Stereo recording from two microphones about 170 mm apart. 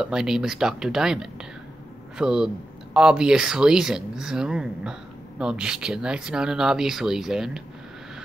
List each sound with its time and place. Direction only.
0.0 s speech: 5° right (ahead or behind)